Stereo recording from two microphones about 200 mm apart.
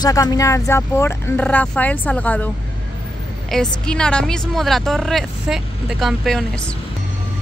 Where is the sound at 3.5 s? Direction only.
5° left (ahead or behind).